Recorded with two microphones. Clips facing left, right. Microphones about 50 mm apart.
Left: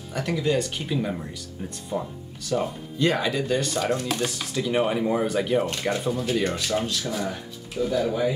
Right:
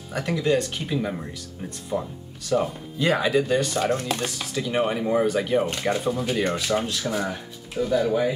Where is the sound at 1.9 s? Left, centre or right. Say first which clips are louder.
Right 2 dB; centre.